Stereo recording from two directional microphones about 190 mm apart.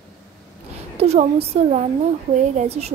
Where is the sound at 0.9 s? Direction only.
35° right (ahead or behind).